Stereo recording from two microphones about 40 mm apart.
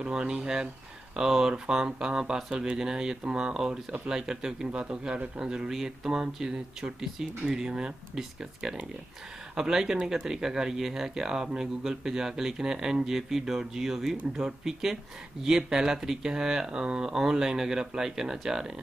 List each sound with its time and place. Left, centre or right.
0.0 s speech: right
4.7 s speech: right